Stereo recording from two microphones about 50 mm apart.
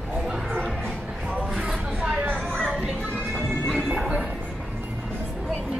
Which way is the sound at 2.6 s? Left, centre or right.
Right.